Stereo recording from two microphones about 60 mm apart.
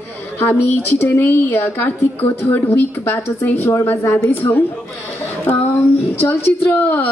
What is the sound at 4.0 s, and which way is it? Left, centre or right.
Speech, left.